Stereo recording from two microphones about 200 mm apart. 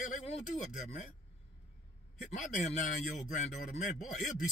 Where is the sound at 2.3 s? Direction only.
35° left (ahead or behind).